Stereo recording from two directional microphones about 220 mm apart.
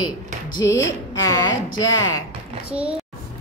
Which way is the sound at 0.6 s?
15° left (ahead or behind).